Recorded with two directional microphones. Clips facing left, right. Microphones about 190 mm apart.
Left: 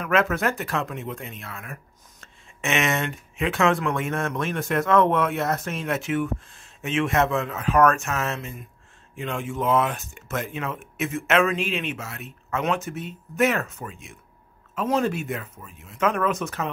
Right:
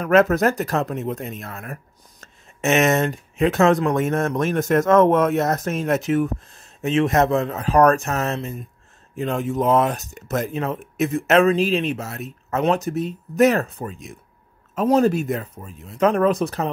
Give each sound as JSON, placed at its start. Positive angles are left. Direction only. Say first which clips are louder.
{"t": 0.0, "sound": "speech", "louder": "right 7 dB", "side_deg": -40}